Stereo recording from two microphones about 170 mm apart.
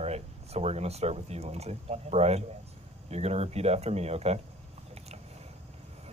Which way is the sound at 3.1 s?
40° right (ahead or behind).